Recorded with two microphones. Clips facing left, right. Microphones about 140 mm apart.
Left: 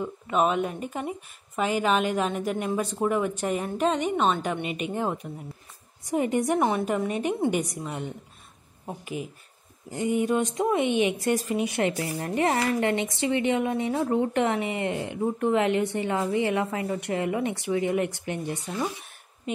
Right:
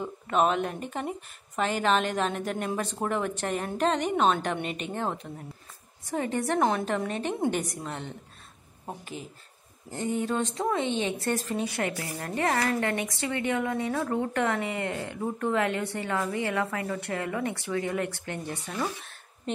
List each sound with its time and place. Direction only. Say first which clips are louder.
0.0 s a woman's voice: left 1 dB; 5° left (ahead or behind)